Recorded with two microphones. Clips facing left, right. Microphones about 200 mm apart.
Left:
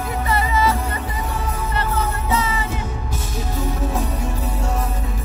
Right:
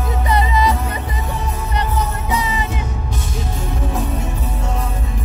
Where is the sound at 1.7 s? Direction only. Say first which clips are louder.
Right 1 dB; 15° right (ahead or behind).